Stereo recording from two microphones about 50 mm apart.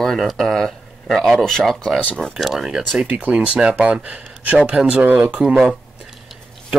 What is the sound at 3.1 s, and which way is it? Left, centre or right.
Speech, right.